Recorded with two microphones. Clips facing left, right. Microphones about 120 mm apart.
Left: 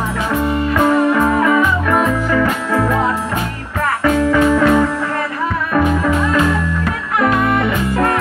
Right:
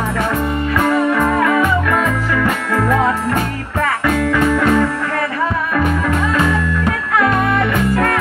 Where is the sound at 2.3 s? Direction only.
5° left (ahead or behind).